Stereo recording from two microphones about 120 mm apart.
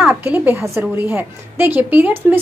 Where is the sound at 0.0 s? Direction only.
10° right (ahead or behind).